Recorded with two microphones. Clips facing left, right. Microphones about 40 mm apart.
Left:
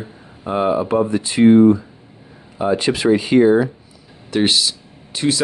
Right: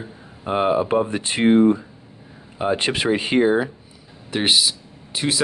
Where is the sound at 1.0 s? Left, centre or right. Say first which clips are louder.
Left 6 dB; right.